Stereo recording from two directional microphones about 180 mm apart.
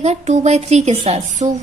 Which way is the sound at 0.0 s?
40° right (ahead or behind).